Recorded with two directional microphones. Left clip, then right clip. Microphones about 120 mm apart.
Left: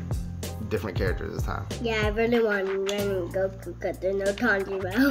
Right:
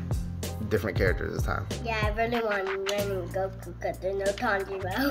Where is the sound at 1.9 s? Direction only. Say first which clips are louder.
Left 3 dB; 45° left (ahead or behind).